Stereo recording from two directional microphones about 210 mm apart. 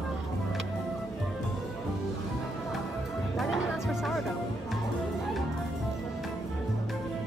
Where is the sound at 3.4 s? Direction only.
Centre (ahead or behind).